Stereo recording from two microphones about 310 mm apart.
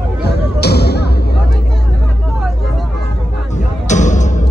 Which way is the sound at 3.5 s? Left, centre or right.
Left.